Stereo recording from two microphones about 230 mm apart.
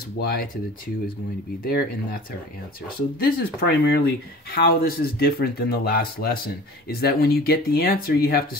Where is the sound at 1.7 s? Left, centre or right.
Left.